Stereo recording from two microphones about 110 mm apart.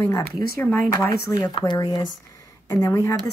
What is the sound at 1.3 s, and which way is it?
Speech, 30° left (ahead or behind).